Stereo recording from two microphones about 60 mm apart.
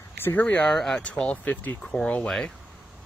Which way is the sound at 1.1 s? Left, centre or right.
Left.